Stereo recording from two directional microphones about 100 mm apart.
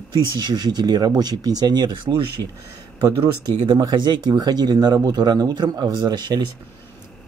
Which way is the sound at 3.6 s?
45° right (ahead or behind).